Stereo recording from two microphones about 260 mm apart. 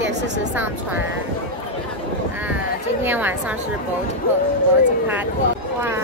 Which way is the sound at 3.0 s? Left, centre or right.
Centre.